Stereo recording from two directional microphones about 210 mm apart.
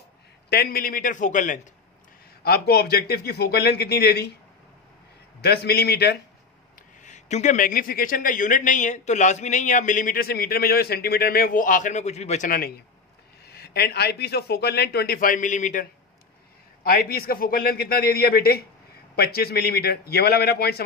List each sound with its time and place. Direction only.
0.5 s a man's voice: 45° left (ahead or behind)
2.4 s a man's voice: 45° left (ahead or behind)
5.4 s a man's voice: 50° left (ahead or behind)
7.0 s a man's voice: 35° left (ahead or behind); by 20.8 s 50° left (ahead or behind)